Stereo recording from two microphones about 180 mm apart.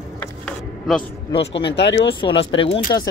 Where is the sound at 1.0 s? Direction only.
30° left (ahead or behind).